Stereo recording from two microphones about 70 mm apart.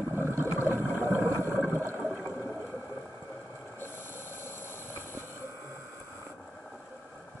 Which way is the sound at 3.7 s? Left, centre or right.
Left.